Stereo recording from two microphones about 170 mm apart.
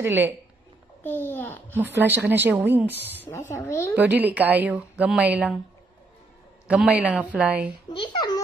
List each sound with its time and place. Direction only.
0.0 s a woman's voice: 15° right (ahead or behind)
1.0 s a child's voice: 10° left (ahead or behind)
1.8 s a woman's voice: 10° right (ahead or behind)
3.3 s a child's voice: 15° left (ahead or behind)
3.9 s a woman's voice: 10° right (ahead or behind)
6.7 s a woman's voice: 5° right (ahead or behind)
7.9 s a child's voice: 25° left (ahead or behind)